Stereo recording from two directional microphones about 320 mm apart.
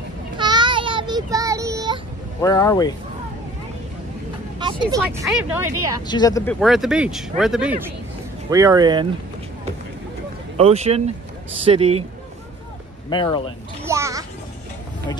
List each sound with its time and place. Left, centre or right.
0.4 s child singing: centre
2.4 s speech: centre
4.6 s speech: centre
6.0 s speech: centre
6.6 s speech: centre
10.6 s speech: centre
13.1 s speech: centre
13.8 s a sound: centre